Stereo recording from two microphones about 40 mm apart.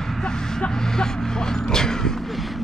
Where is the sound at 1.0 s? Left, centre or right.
Centre.